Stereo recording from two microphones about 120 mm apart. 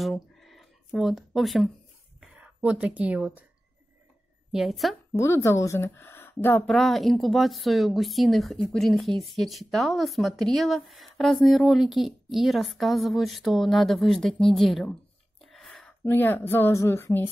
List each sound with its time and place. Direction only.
0.0 s a sound: centre (ahead or behind)
2.1 s speech: 10° right (ahead or behind)
4.5 s a woman's voice: 5° right (ahead or behind)
5.1 s speech: 20° left (ahead or behind)
6.7 s speech: centre (ahead or behind)
15.4 s a sound: centre (ahead or behind)
16.0 s speech: 15° left (ahead or behind)